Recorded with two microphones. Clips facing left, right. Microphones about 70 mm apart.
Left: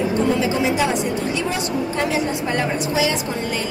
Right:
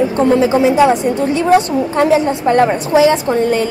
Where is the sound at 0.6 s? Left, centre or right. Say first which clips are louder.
Right 9 dB; right.